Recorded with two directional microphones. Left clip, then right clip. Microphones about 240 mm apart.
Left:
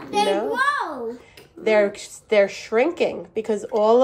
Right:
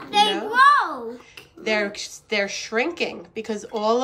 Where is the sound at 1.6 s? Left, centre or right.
Centre.